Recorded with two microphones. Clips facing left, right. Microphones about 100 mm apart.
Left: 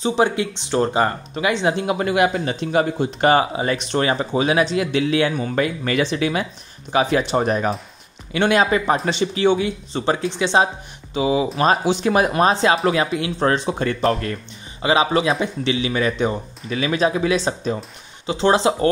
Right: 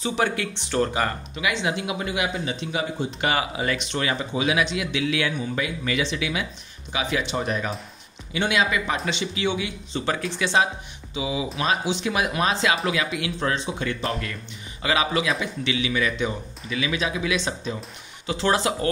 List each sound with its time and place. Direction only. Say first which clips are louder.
0.0 s a man's voice: left 6 dB; 25° left (ahead or behind)
2.0 s a man's voice: left 8 dB; 55° left (ahead or behind); by 10.7 s 30° left (ahead or behind)
11.1 s a man's voice: left 8 dB; 50° left (ahead or behind)
14.8 s a man's voice: left 6 dB; 30° left (ahead or behind)
18.2 s speech: left 6 dB; 25° left (ahead or behind)